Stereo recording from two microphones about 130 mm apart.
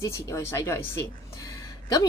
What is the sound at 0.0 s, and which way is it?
Speech, 20° left (ahead or behind).